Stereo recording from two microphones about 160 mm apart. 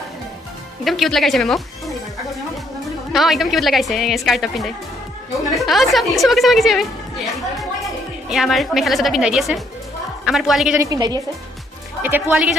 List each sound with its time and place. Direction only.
0.8 s speech: centre (ahead or behind)
3.1 s a woman's voice: centre (ahead or behind)
8.3 s a woman's voice: centre (ahead or behind)
10.8 s a woman's voice: 25° right (ahead or behind)
12.0 s speech: 10° right (ahead or behind)